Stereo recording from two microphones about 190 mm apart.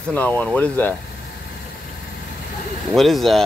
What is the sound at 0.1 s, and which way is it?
Speech, 10° left (ahead or behind).